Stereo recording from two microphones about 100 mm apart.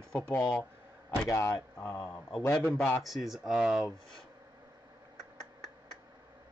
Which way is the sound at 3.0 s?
Centre (ahead or behind).